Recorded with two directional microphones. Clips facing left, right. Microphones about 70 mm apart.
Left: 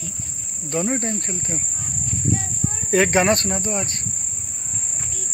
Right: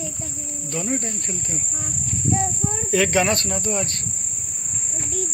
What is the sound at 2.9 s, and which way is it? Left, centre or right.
Speech, left.